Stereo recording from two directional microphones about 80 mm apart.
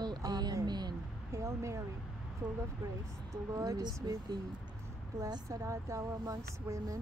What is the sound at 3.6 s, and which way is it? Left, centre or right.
Speech, right.